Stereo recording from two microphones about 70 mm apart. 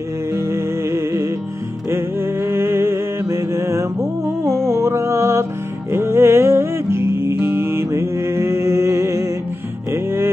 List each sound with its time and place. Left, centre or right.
0.3 s music: right